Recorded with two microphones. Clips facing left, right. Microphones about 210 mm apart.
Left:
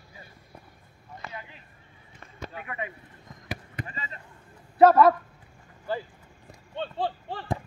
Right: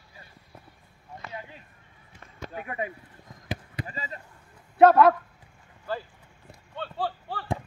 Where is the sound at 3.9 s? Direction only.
35° right (ahead or behind).